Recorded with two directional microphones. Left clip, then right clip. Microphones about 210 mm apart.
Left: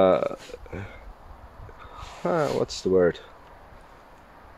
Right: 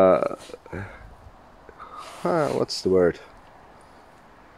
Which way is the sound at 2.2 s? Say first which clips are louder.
Right 1 dB; 30° right (ahead or behind).